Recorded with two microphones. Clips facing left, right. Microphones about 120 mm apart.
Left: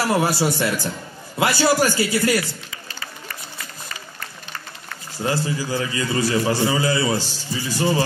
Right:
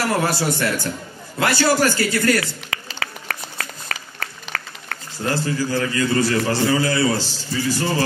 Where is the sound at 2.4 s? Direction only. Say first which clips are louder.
Right 2 dB; 85° right.